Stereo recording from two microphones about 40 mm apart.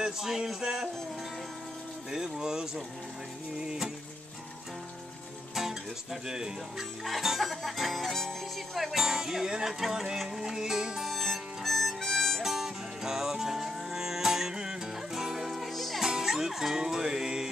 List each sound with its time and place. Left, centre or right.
0.0 s speech: centre
2.0 s speech: centre
5.5 s music: centre
6.2 s speech: centre
7.1 s speech: centre
11.1 s harmonica: centre
12.4 s music: centre
16.0 s music: centre